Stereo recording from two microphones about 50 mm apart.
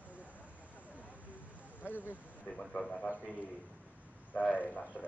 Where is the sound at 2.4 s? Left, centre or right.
Centre.